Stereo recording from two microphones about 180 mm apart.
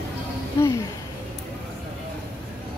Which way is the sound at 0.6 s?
15° left (ahead or behind).